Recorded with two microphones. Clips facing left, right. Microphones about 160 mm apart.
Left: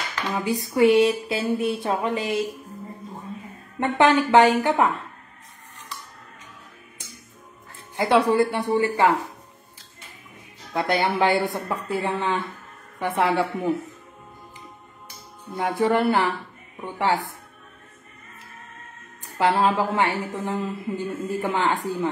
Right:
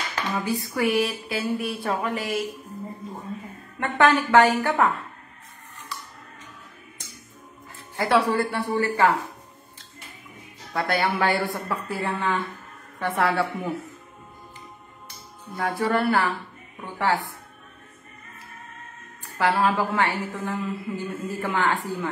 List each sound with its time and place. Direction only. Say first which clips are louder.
0.5 s a woman's voice: left 8 dB; 20° left (ahead or behind)
3.8 s a woman's voice: left 2 dB; 20° left (ahead or behind)
7.9 s speech: left 2 dB; 20° left (ahead or behind)
10.7 s a woman's voice: left 2 dB; 20° left (ahead or behind)
15.5 s a woman's voice: left 3 dB; 20° left (ahead or behind)
19.2 s a sound: left 2 dB; 20° left (ahead or behind)
19.6 s a woman's voice: left 1 dB; 20° left (ahead or behind)